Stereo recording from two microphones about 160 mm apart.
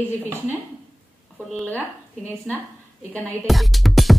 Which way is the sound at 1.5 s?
5° left (ahead or behind).